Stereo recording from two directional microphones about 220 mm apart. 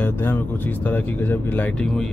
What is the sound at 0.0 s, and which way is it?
Speech, 10° left (ahead or behind).